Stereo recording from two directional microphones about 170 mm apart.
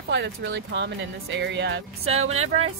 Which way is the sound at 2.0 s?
40° right (ahead or behind).